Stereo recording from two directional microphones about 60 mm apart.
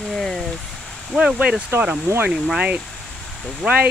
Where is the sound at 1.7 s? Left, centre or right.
Right.